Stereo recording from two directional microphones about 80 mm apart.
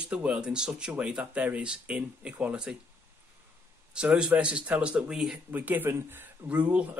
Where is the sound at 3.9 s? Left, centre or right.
Centre.